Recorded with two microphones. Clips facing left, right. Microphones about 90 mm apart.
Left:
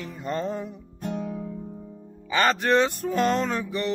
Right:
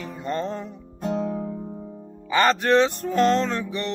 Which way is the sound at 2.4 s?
5° left (ahead or behind).